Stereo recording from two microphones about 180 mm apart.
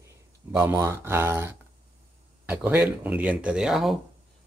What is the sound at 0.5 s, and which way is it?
Speech, 10° right (ahead or behind).